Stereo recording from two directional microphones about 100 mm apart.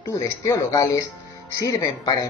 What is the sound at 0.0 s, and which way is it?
Speech, 30° left (ahead or behind).